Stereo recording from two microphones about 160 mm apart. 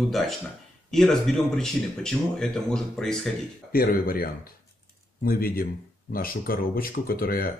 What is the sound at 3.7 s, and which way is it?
Speech, 65° left (ahead or behind).